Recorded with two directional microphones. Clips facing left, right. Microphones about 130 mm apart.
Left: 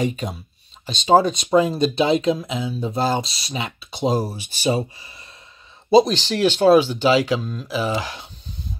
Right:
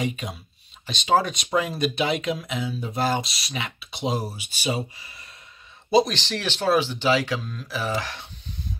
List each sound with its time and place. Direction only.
0.0 s speech: 40° left (ahead or behind)
7.1 s speech: 25° left (ahead or behind)